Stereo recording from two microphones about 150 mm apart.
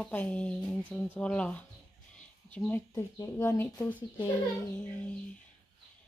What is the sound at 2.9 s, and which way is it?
Speech, 20° left (ahead or behind).